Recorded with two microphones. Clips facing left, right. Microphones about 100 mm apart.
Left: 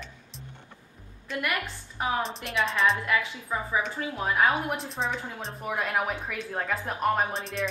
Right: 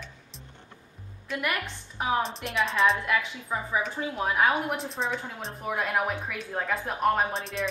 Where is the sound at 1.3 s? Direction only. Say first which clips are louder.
Even; centre (ahead or behind).